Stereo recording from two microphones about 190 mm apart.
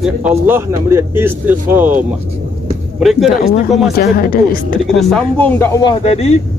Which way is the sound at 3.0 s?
Centre (ahead or behind).